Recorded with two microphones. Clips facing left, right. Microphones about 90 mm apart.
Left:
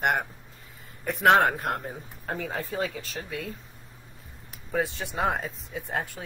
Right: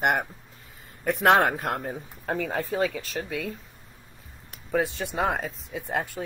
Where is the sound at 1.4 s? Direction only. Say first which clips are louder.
Even; 65° right (ahead or behind).